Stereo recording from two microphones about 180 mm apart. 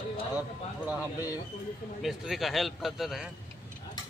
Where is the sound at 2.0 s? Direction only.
Centre (ahead or behind).